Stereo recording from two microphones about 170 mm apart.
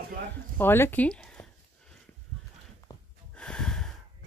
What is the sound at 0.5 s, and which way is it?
Speech, 15° left (ahead or behind).